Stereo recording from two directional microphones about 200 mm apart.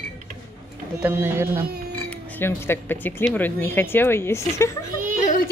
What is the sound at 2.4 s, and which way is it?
Speech, 10° left (ahead or behind).